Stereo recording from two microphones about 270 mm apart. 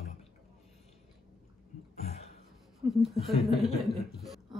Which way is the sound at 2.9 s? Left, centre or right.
Centre.